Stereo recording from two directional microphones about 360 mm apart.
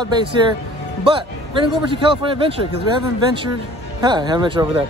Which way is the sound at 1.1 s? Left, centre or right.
Centre.